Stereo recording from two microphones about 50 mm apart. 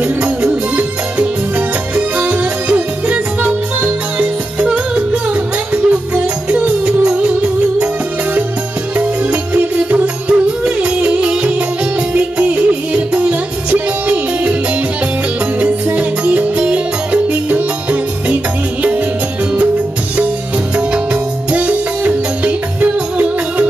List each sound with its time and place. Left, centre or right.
0.7 s music: right
8.9 s music: right
15.6 s music: right
20.7 s music: right